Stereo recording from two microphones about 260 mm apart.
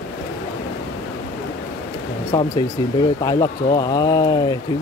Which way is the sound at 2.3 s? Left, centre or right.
Centre.